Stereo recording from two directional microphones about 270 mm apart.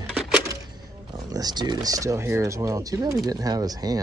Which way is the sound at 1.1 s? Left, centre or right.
Centre.